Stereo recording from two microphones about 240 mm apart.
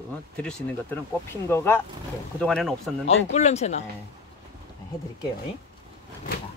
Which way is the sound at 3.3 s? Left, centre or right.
Left.